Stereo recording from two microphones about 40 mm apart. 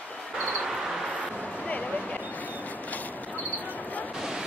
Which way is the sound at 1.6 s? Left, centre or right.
Left.